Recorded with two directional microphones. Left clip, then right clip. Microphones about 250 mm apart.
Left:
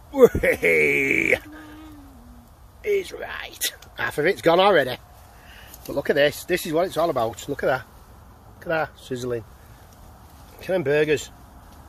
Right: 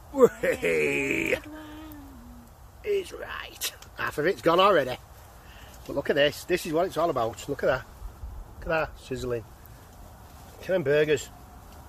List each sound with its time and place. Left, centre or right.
0.1 s speech: left
2.8 s speech: left
10.6 s speech: left